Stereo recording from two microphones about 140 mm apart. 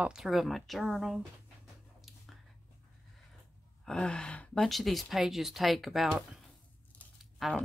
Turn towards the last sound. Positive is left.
turn(degrees=0)  # may be behind; listen again after turning